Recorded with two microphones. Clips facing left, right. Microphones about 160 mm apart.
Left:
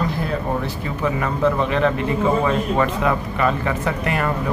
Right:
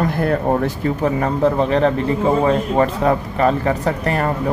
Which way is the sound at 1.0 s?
35° right (ahead or behind).